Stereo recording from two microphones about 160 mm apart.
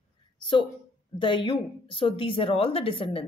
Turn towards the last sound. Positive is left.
turn(degrees=35)  # may be behind; listen again after turning